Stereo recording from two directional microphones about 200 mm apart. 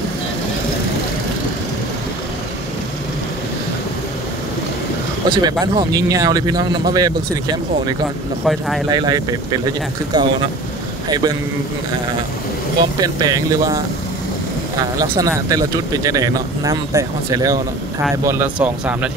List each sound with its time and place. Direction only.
5.3 s speech: 20° right (ahead or behind)
8.5 s speech: centre (ahead or behind)
8.9 s speech: 20° right (ahead or behind)
13.0 s speech: 20° right (ahead or behind)
15.0 s speech: 15° right (ahead or behind)